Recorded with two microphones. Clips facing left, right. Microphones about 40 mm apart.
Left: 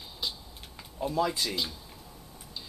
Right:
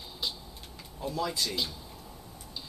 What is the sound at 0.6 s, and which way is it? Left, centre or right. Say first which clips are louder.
Tick-tock: left 5 dB; centre.